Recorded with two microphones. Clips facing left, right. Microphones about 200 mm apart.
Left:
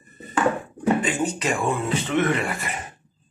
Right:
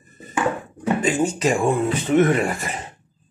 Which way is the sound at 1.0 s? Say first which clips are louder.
Right 5 dB; 40° right (ahead or behind).